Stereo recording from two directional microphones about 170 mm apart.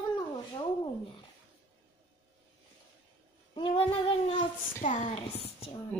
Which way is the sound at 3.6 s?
35° left (ahead or behind).